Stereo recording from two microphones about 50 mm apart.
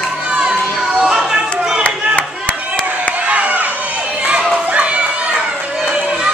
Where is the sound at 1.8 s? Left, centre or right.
Left.